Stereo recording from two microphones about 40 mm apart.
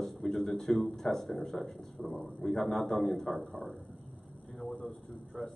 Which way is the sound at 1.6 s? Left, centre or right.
Left.